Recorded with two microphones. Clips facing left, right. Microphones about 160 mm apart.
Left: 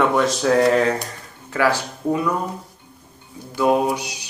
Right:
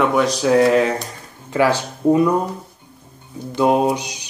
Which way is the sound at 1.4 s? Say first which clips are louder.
Right 3 dB; 20° right (ahead or behind).